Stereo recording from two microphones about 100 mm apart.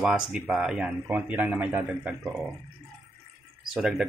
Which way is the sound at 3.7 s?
5° right (ahead or behind).